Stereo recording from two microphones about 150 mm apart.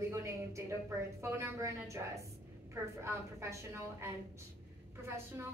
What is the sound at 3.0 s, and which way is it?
A woman's voice, 20° right (ahead or behind).